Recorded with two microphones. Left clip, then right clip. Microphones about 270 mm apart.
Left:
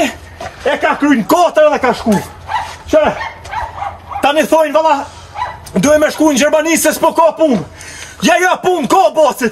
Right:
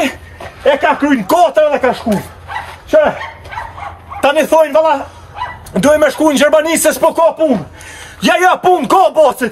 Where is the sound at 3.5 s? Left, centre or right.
Left.